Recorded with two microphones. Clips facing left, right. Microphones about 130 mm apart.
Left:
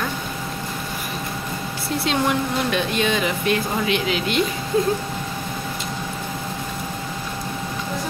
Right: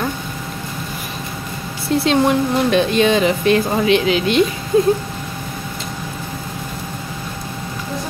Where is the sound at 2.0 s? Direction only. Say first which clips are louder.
Right 6 dB; 30° right (ahead or behind).